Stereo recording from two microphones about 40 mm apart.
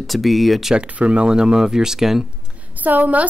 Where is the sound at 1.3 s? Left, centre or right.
Centre.